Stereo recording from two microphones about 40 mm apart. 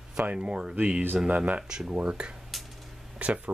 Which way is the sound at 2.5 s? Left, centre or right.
Centre.